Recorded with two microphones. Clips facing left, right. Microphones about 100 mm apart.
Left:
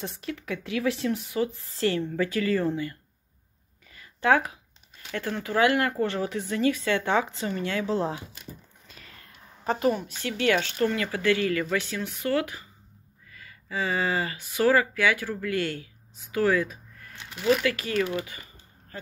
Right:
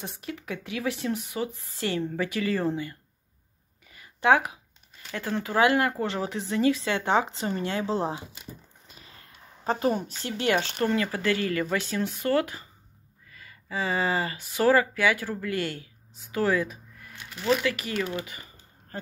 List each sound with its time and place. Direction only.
0.0 s speech: 10° right (ahead or behind); by 3.0 s 25° right (ahead or behind)
3.9 s a sound: 15° right (ahead or behind)
5.1 s speech: 20° right (ahead or behind)
13.7 s speech: 25° right (ahead or behind)
18.0 s typing: 30° right (ahead or behind)